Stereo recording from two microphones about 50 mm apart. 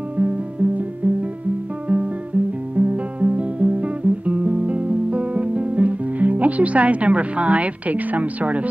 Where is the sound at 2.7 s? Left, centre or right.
Right.